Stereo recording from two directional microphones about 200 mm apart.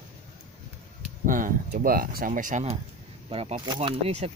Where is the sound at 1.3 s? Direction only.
40° right (ahead or behind).